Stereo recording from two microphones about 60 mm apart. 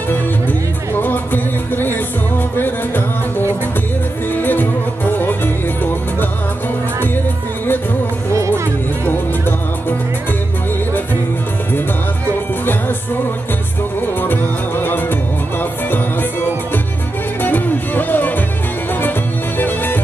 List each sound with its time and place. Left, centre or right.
0.1 s music: left
14.2 s music: left
17.4 s music: left
19.6 s music: left